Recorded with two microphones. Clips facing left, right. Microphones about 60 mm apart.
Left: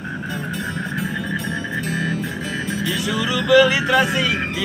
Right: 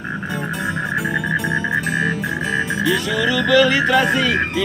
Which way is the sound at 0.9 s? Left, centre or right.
Right.